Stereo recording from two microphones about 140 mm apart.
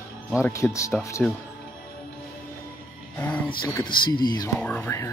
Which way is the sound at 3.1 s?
10° left (ahead or behind).